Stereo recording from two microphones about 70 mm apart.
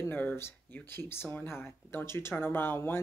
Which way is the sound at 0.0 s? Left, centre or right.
Left.